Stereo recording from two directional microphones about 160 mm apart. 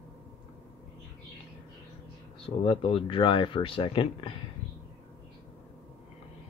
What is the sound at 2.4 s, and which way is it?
Speech, 35° left (ahead or behind).